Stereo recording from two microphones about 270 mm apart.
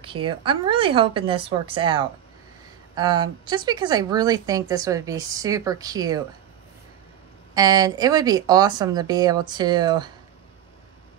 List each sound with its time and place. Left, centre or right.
0.0 s a woman's voice: centre
7.5 s speech: centre